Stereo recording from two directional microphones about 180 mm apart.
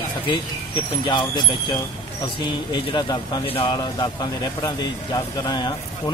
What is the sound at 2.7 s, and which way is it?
Speech, 25° left (ahead or behind).